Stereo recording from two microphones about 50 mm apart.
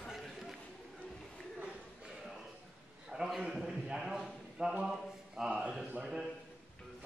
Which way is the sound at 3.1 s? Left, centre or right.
Centre.